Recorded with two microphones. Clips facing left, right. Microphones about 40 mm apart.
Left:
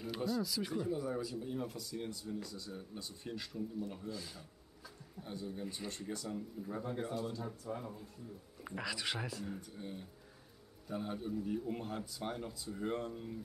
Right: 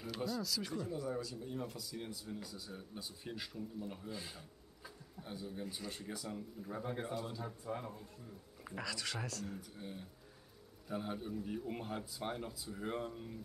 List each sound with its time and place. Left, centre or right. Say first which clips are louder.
0.0 s speech: left 3 dB; centre
4.1 s speech: left 1 dB; right
5.2 s speech: left 2 dB; centre
6.8 s speech: left 1 dB; centre
8.6 s speech: left 3 dB; centre
9.6 s speech: left 2 dB; centre